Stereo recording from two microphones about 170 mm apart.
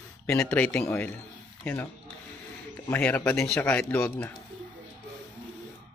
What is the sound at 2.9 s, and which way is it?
Speech, 10° left (ahead or behind).